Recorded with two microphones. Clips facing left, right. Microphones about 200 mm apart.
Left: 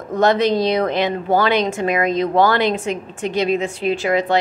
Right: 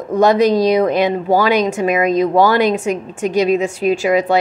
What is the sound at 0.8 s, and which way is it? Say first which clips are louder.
Speech: right 4 dB; 15° right (ahead or behind).